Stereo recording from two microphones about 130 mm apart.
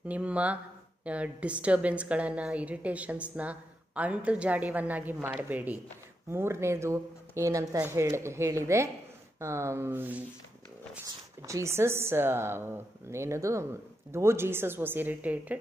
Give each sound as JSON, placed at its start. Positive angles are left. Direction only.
{"t": 0.1, "sound": "a woman's voice", "side_deg": -10}
{"t": 11.4, "sound": "a woman's voice", "side_deg": -25}